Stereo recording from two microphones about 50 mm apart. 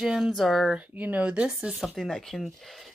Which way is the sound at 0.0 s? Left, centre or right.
Centre.